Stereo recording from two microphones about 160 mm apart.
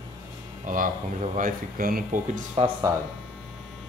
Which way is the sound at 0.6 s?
55° right (ahead or behind).